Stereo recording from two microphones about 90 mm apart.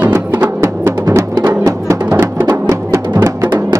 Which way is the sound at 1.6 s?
35° right (ahead or behind).